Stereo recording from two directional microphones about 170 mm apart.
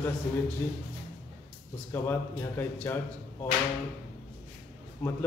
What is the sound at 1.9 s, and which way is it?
Speech, 15° left (ahead or behind).